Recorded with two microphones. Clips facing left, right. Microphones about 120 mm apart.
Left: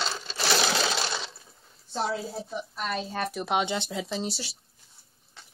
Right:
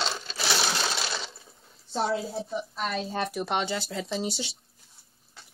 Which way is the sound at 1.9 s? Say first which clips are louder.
Right 2 dB; centre (ahead or behind).